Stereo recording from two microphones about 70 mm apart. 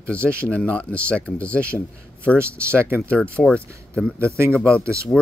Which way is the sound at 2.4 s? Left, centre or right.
Right.